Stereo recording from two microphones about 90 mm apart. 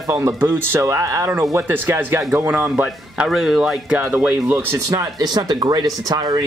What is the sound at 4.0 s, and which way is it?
Speech, 15° right (ahead or behind).